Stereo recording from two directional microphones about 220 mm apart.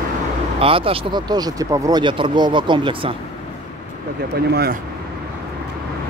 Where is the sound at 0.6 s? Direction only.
25° right (ahead or behind).